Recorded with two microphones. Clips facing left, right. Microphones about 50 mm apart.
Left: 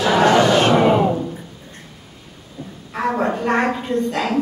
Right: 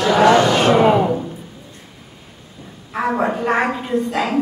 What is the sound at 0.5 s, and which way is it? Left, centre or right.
Speech, right.